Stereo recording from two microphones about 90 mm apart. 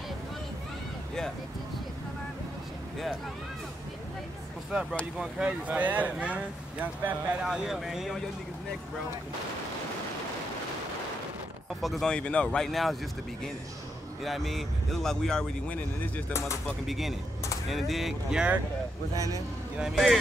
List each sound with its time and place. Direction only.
5.2 s speech: 15° right (ahead or behind)
7.4 s speech: 5° right (ahead or behind)
11.8 s speech: 5° left (ahead or behind)
12.5 s speech: centre (ahead or behind)
14.2 s speech: centre (ahead or behind)
16.8 s speech: centre (ahead or behind)
19.1 s speech: 40° right (ahead or behind)
19.8 s speech: centre (ahead or behind)